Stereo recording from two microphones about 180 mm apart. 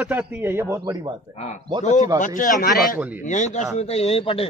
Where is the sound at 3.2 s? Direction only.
40° left (ahead or behind).